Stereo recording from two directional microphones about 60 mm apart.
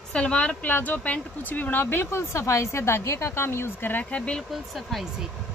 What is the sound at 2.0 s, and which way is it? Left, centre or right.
Speech, left.